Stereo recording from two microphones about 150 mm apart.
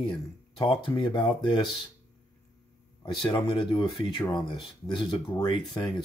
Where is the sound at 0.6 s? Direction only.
35° left (ahead or behind).